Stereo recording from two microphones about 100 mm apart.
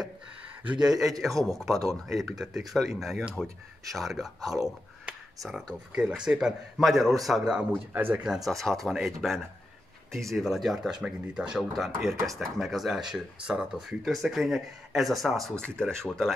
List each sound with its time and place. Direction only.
1.2 s speech: centre (ahead or behind)
7.9 s speech: 15° right (ahead or behind)
8.5 s speech: centre (ahead or behind)